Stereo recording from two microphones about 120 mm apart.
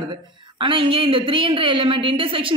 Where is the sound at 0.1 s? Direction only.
45° right (ahead or behind).